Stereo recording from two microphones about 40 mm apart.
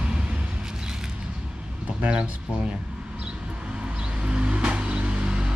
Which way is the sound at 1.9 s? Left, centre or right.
Right.